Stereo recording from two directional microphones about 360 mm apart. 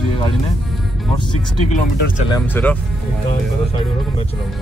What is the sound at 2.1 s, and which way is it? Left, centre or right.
Speech, centre.